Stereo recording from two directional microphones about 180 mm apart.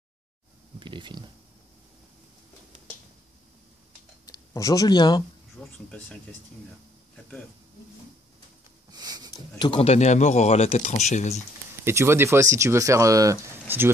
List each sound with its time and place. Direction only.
0.7 s speech: 25° right (ahead or behind)
4.3 s speech: 20° left (ahead or behind)
5.6 s a sound: centre (ahead or behind)
8.9 s a sound: 20° right (ahead or behind)
9.3 s speech: 25° left (ahead or behind)
11.8 s speech: 15° right (ahead or behind)